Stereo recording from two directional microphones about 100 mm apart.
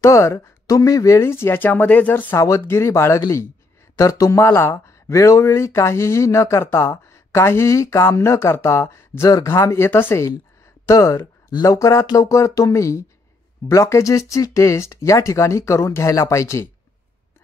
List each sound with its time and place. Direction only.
0.0 s speech: 30° left (ahead or behind)
2.3 s speech: 30° left (ahead or behind)